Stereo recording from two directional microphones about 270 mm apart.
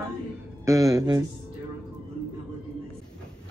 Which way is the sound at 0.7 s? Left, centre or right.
Centre.